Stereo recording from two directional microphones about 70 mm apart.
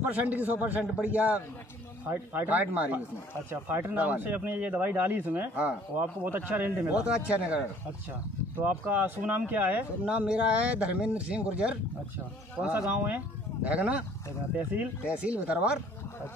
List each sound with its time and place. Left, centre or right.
0.1 s speech: right
10.0 s speech: centre